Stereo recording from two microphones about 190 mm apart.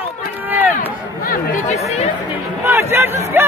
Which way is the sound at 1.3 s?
45° left (ahead or behind).